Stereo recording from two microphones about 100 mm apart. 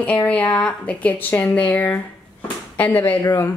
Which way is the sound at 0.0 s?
15° left (ahead or behind).